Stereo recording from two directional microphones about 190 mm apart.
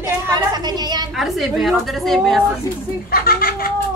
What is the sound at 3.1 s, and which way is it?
Speech, 50° left (ahead or behind).